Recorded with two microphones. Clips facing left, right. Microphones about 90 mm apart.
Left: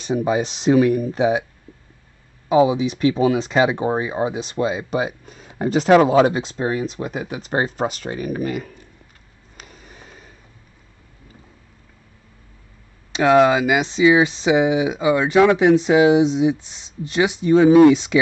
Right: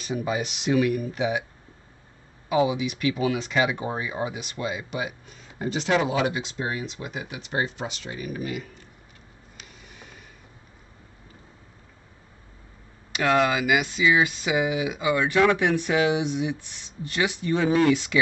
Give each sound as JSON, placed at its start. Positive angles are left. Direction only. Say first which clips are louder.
{"t": 0.0, "sound": "speech", "louder": "left 7 dB", "side_deg": 30}
{"t": 2.5, "sound": "speech", "louder": "left 7 dB", "side_deg": 30}
{"t": 9.6, "sound": "a sound", "louder": "left 5 dB", "side_deg": 40}
{"t": 13.1, "sound": "speech", "louder": "left 8 dB", "side_deg": 25}